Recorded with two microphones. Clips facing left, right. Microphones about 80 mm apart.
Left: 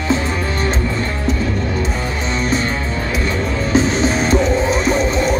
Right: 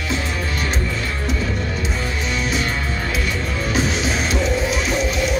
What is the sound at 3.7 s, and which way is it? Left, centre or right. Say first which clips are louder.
Music: left 6 dB; left.